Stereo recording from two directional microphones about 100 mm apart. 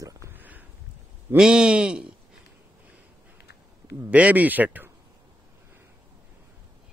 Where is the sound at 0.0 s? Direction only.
35° right (ahead or behind).